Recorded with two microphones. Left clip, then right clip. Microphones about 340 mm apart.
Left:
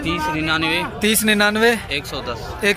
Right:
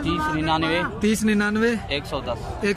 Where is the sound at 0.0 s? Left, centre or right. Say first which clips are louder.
Left 2 dB; right.